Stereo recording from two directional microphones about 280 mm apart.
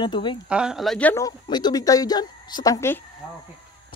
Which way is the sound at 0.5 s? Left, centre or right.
Centre.